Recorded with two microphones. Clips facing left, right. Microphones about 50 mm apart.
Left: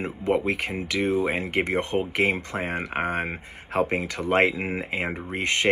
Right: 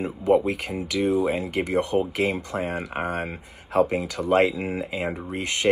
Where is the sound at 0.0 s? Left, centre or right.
Left.